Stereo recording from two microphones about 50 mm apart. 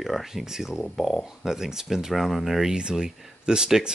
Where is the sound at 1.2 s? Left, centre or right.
Centre.